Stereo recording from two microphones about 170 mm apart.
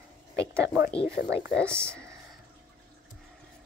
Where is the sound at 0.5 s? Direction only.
15° right (ahead or behind).